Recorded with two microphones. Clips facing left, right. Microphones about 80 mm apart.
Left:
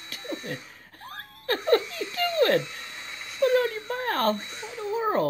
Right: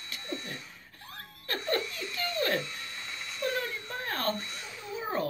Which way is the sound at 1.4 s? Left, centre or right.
Left.